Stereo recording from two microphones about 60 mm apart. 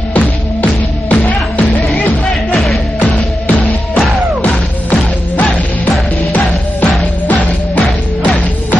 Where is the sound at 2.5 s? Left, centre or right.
Centre.